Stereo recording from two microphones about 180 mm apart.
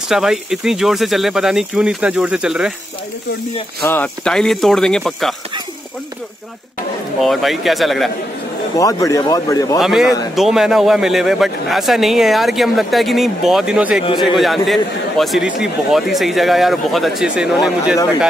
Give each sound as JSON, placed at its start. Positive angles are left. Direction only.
{"t": 0.1, "sound": "a man's voice", "side_deg": 0}
{"t": 3.8, "sound": "a man's voice", "side_deg": 10}
{"t": 7.2, "sound": "a man's voice", "side_deg": 0}
{"t": 8.7, "sound": "speech", "side_deg": 20}
{"t": 9.8, "sound": "a man's voice", "side_deg": 0}